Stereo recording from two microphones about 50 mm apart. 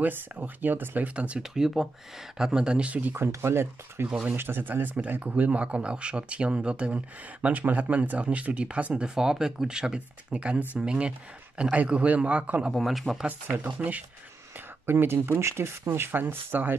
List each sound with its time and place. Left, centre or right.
0.0 s speech: right
1.1 s speech: right
1.5 s speech: centre; by 3.2 s right
3.3 s speech: right
12.7 s speech: centre
13.8 s speech: right
14.9 s speech: right